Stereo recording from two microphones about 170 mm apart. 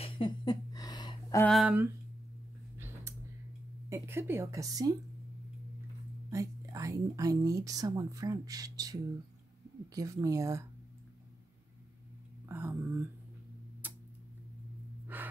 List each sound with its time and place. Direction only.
0.0 s a sound: 25° left (ahead or behind)
1.4 s speech: centre (ahead or behind)
2.8 s a sound: 15° right (ahead or behind)
3.9 s a woman's voice: 15° right (ahead or behind)
6.3 s speech: 20° right (ahead or behind)
12.4 s a woman's voice: 10° right (ahead or behind)
13.8 s tick-tock: 10° right (ahead or behind)
15.1 s gasp: 10° right (ahead or behind)